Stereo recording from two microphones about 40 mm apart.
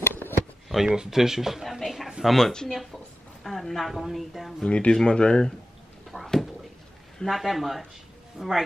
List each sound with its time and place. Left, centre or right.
0.0 s a sound: left
0.8 s speech: centre
2.3 s a woman's voice: centre
4.6 s speech: left
6.2 s a sound: centre
7.2 s a woman's voice: centre